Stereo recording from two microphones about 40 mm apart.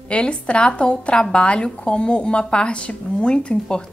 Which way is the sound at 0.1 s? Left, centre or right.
Left.